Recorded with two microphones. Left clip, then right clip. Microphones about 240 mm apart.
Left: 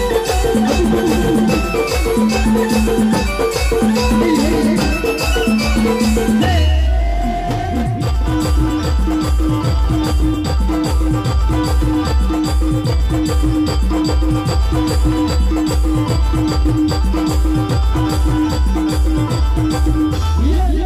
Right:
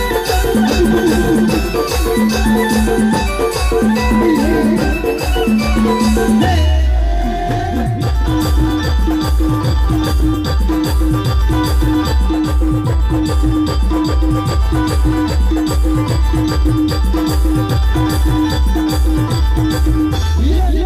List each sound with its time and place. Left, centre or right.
0.0 s music: left
8.4 s music: left
14.0 s music: left